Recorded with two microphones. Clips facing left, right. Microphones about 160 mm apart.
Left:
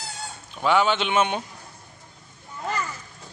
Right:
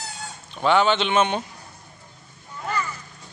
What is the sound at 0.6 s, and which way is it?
Speech, 5° left (ahead or behind).